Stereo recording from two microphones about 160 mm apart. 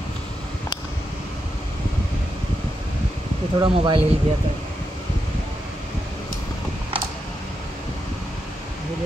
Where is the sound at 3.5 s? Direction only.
30° right (ahead or behind).